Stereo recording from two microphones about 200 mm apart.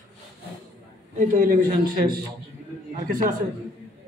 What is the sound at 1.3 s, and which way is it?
Speech, 45° right (ahead or behind).